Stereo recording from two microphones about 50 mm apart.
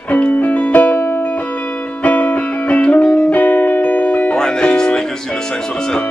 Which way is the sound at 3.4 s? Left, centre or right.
Left.